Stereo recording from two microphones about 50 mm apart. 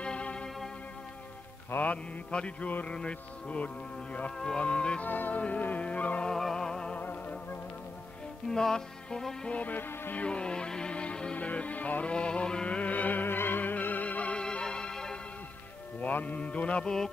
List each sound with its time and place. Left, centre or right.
0.0 s music: left
2.3 s speech: left
5.0 s music: left
5.4 s speech: left
6.2 s music: centre
7.0 s music: left
8.5 s music: centre
9.6 s music: left
10.1 s speech: left
12.6 s music: left
16.0 s speech: left